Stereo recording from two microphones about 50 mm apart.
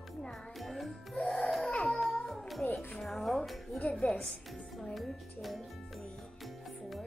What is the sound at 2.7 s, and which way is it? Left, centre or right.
Music, centre.